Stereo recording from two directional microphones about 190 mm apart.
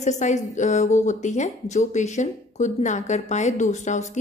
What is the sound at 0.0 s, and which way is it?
A woman's voice, 40° left (ahead or behind).